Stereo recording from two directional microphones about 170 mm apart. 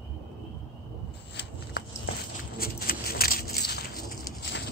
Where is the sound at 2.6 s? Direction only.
60° left (ahead or behind).